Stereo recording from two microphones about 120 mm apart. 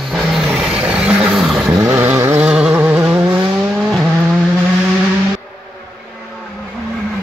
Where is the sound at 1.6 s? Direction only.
25° right (ahead or behind).